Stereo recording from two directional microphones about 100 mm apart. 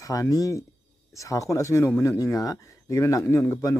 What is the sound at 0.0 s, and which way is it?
Speech, 35° left (ahead or behind).